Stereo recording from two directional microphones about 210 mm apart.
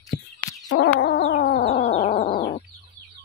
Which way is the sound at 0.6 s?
60° left (ahead or behind).